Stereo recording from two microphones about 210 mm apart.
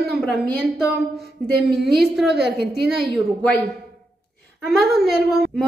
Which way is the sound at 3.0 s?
Centre (ahead or behind).